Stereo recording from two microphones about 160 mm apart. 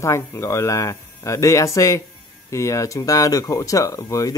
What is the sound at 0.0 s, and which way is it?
Speech, 15° left (ahead or behind).